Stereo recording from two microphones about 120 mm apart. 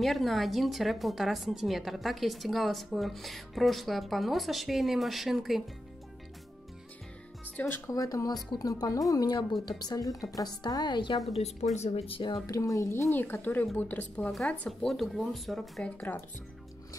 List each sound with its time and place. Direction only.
0.0 s speech: centre (ahead or behind)
7.4 s speech: 15° left (ahead or behind)
7.9 s speech: 30° left (ahead or behind)
11.3 s speech: 65° left (ahead or behind)
12.4 s a woman's voice: 30° left (ahead or behind); by 15.9 s centre (ahead or behind)